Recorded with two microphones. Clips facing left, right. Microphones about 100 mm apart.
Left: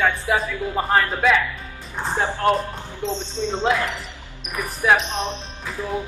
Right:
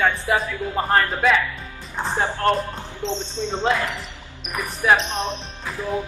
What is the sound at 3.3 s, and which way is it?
Speech, 15° right (ahead or behind).